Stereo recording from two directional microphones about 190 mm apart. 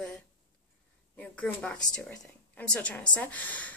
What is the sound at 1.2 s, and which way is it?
A woman's voice, 5° left (ahead or behind).